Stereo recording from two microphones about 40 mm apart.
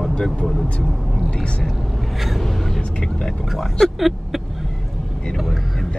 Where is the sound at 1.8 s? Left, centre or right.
Centre.